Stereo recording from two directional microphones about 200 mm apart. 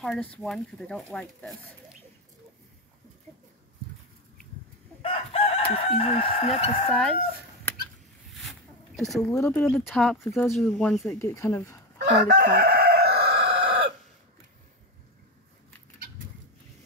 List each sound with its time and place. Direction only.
0.0 s speech: 5° left (ahead or behind)
5.0 s chicken: 30° left (ahead or behind)
6.9 s speech: centre (ahead or behind)
8.4 s zipper: centre (ahead or behind)
9.4 s speech: 5° left (ahead or behind)
10.2 s speech: 15° left (ahead or behind)
10.5 s speech: centre (ahead or behind)
11.1 s speech: 15° left (ahead or behind)
12.0 s chicken: 55° right (ahead or behind)